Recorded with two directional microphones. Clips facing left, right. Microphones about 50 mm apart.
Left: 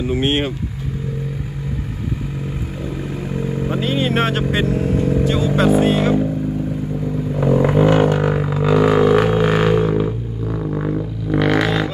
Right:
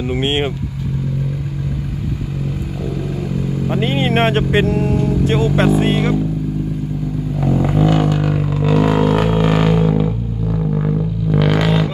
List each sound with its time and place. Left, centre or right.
0.0 s speech: right
3.3 s vehicle: left
3.8 s speech: right
4.9 s vehicle: left
5.2 s vehicle: right
5.8 s speech: right
7.3 s vehicle: left
7.8 s music: left
8.5 s music: centre
9.4 s didgeridoo: centre
9.8 s a sound: centre
10.5 s didgeridoo: centre